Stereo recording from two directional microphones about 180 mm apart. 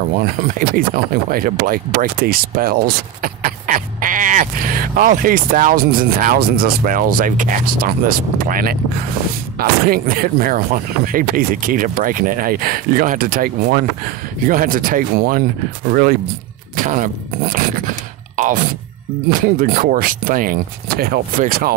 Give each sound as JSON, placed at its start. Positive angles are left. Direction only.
{"t": 0.2, "sound": "speech", "side_deg": -50}
{"t": 16.7, "sound": "speech", "side_deg": -45}
{"t": 17.7, "sound": "a sound", "side_deg": -45}
{"t": 19.6, "sound": "speech", "side_deg": -50}